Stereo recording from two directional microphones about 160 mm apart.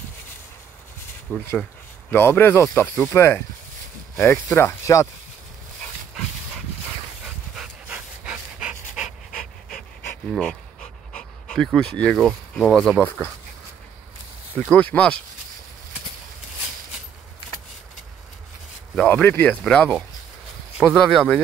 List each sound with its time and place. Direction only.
1.4 s speech: 15° left (ahead or behind)
7.2 s dog: 5° right (ahead or behind)
9.0 s pant: centre (ahead or behind)
10.3 s speech: 5° left (ahead or behind)
14.6 s speech: 10° left (ahead or behind)
18.9 s speech: 10° left (ahead or behind)